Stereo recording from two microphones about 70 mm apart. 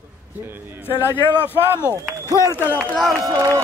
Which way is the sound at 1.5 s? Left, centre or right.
Right.